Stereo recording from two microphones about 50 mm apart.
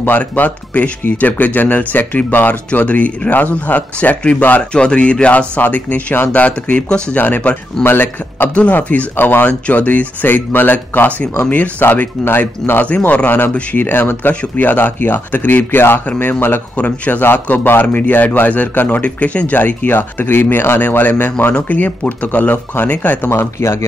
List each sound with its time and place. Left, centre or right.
0.4 s speech: left
4.7 s speech: centre
5.6 s speech: left
7.2 s speech: left
8.5 s speech: left
9.1 s speech: left
9.5 s speech: left
11.4 s speech: left
11.8 s speech: left
13.0 s speech: left
16.7 s speech: left
20.9 s speech: left
23.6 s speech: left